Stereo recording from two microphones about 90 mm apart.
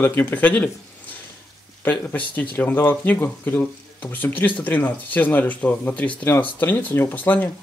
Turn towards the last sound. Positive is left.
turn(degrees=20)  # may be behind; listen again after turning